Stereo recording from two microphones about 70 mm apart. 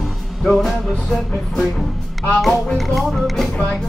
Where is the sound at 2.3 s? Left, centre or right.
Centre.